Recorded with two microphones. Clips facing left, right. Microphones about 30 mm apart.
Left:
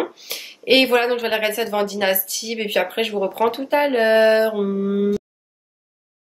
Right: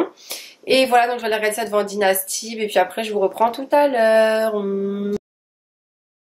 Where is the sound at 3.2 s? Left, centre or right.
Centre.